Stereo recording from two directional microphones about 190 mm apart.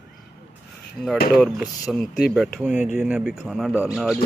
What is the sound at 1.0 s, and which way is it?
Speech, 5° left (ahead or behind).